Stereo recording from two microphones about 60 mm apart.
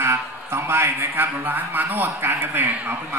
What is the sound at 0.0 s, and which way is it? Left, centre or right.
A man's voice, right.